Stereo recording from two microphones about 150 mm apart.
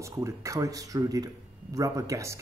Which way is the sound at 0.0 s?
20° right (ahead or behind).